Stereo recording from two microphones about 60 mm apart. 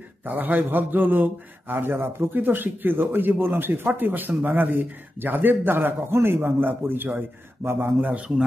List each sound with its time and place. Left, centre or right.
0.2 s a man's voice: right
8.0 s a man's voice: right